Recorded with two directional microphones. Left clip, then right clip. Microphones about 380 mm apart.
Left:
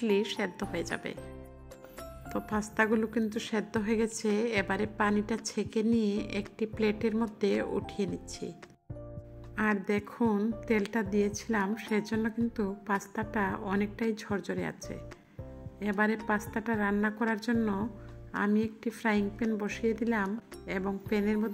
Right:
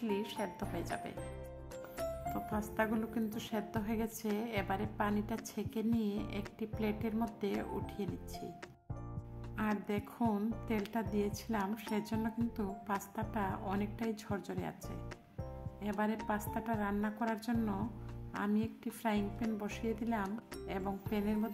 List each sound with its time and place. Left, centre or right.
0.0 s a woman's voice: centre
9.6 s a woman's voice: centre